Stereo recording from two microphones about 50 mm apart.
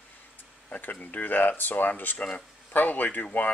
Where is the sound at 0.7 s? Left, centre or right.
Left.